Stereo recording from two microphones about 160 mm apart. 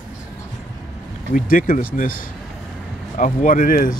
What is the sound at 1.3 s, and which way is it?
Speech, 60° left (ahead or behind).